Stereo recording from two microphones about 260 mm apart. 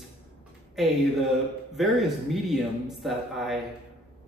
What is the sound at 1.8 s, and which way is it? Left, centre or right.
Speech, centre.